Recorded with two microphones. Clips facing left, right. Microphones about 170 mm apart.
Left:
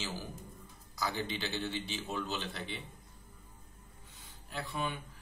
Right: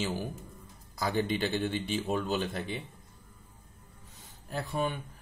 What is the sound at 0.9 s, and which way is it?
Speech, 50° right (ahead or behind).